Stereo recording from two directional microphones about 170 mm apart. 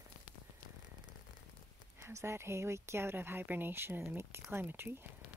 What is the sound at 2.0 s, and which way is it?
Speech, 15° right (ahead or behind).